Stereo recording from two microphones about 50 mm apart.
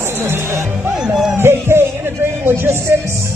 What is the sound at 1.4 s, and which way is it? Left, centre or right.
Music, right.